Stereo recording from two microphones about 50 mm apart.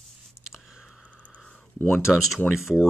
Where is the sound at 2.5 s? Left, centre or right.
Centre.